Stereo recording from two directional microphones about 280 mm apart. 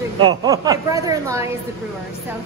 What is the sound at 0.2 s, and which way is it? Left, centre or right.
A woman's voice, centre.